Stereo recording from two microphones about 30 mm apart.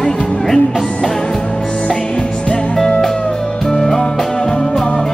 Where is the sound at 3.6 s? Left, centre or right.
Centre.